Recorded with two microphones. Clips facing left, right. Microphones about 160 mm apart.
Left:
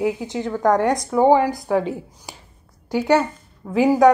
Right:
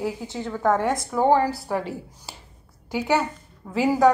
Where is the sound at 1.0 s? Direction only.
10° left (ahead or behind).